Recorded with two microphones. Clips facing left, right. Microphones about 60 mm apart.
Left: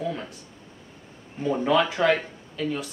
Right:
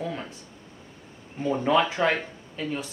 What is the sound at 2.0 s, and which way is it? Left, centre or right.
Speech, centre.